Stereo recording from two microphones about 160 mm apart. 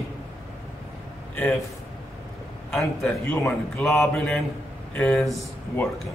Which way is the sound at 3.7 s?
Centre (ahead or behind).